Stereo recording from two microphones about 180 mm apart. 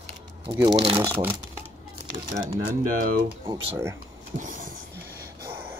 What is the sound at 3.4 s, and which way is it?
Speech, 15° right (ahead or behind).